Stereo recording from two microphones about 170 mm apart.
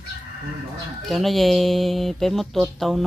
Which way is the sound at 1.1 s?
Centre (ahead or behind).